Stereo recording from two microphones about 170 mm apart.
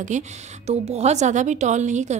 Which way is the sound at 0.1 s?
45° right (ahead or behind).